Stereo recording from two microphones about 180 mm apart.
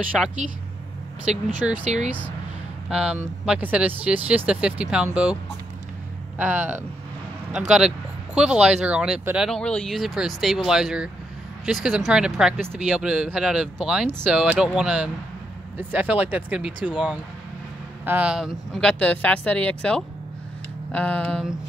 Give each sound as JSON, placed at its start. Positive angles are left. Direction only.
{"t": 0.1, "sound": "speech", "side_deg": 5}
{"t": 1.2, "sound": "speech", "side_deg": -40}
{"t": 2.9, "sound": "speech", "side_deg": -5}
{"t": 18.0, "sound": "speech", "side_deg": -10}
{"t": 20.9, "sound": "a sound", "side_deg": 10}